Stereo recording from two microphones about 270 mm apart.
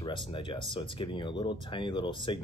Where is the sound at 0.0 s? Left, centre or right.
Centre.